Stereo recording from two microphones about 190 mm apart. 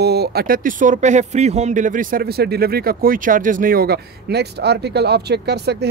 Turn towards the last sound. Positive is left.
turn(degrees=-60)  # may be behind; listen again after turning